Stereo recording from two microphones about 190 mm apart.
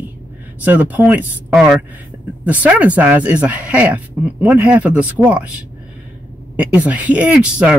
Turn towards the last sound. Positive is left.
turn(degrees=-5)  # may be behind; listen again after turning